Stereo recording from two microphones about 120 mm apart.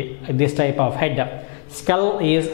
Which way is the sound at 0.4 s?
10° left (ahead or behind).